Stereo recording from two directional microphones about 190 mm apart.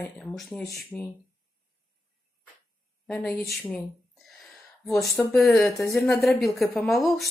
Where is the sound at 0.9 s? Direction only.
5° left (ahead or behind).